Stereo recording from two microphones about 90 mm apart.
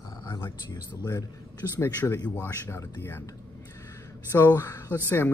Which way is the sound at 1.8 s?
30° left (ahead or behind).